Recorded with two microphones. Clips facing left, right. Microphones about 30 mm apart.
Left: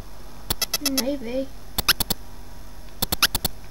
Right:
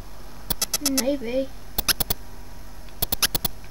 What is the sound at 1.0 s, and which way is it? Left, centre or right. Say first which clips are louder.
Speech: right 2 dB; centre.